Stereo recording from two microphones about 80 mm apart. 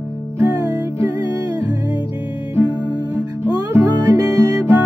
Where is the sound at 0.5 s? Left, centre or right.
Right.